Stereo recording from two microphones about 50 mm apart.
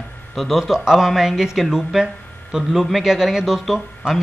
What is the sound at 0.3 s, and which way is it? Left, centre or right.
Speech, centre.